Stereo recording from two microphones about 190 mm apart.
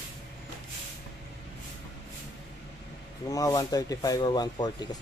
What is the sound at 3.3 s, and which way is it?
Speech, 20° left (ahead or behind).